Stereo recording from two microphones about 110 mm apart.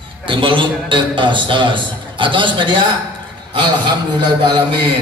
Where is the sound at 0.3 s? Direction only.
50° right (ahead or behind).